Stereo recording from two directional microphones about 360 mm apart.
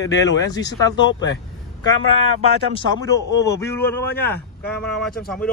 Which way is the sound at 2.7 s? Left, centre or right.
Centre.